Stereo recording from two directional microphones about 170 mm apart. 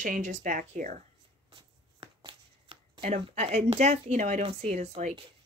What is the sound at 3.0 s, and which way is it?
Speech, 45° right (ahead or behind).